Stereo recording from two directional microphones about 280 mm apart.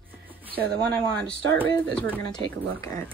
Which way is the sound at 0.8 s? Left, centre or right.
Centre.